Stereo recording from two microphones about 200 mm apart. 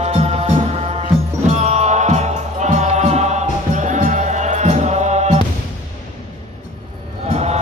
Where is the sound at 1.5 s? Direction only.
35° right (ahead or behind).